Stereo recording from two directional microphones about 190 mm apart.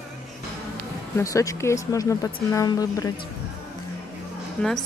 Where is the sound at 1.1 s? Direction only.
15° left (ahead or behind).